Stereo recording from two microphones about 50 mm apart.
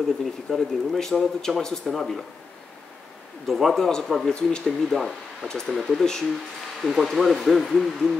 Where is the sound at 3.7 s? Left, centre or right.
Centre.